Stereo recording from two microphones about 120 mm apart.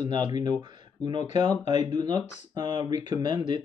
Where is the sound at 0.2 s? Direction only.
35° right (ahead or behind).